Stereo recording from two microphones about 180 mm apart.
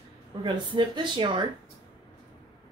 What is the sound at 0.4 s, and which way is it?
Speech, 25° right (ahead or behind).